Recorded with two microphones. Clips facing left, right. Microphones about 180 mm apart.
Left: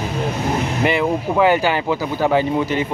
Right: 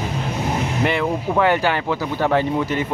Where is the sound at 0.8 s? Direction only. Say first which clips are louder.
Left 2 dB; 5° left (ahead or behind).